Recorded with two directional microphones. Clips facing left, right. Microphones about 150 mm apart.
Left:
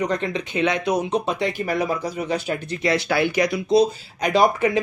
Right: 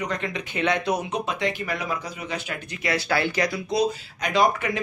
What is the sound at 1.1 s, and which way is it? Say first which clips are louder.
Speech: left 4 dB; 35° left (ahead or behind).